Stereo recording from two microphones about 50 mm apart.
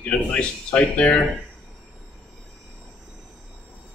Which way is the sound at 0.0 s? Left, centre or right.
Left.